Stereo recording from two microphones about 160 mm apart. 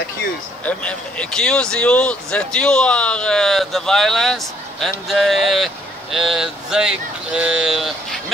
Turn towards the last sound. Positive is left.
turn(degrees=0)  # may be behind; listen again after turning